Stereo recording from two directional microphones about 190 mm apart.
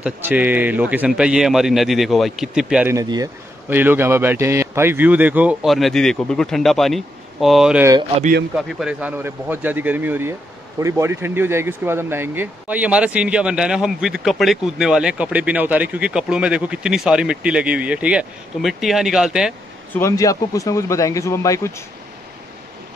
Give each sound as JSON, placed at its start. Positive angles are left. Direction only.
{"t": 0.0, "sound": "a man's voice", "side_deg": -10}
{"t": 19.9, "sound": "speech", "side_deg": 15}